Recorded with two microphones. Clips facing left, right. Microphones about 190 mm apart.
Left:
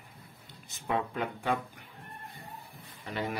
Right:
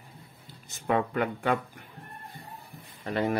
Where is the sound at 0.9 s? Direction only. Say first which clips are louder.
Right 5 dB; 65° right (ahead or behind).